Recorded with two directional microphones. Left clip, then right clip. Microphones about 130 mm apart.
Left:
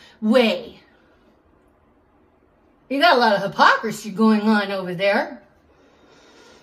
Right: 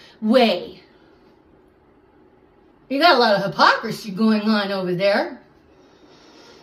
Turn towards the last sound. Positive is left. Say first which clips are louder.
# right 1 dB
turn(degrees=30)  # may be behind; listen again after turning